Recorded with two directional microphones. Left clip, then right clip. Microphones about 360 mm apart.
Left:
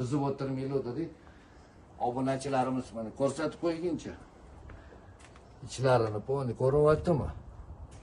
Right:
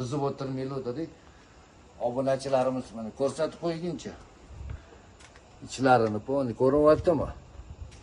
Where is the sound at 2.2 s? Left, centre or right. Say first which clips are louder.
Right 7 dB; centre.